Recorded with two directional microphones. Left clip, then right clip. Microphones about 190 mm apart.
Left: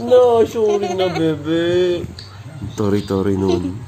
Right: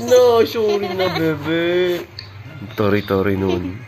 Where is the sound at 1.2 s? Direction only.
15° left (ahead or behind).